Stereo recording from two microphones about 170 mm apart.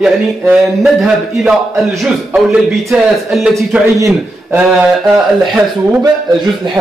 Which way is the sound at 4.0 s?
10° right (ahead or behind).